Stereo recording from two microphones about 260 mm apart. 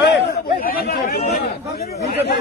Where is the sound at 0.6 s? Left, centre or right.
Left.